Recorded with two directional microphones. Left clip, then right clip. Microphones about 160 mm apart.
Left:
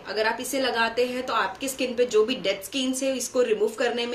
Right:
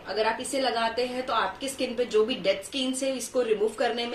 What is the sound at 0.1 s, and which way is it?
A woman's voice, 10° left (ahead or behind).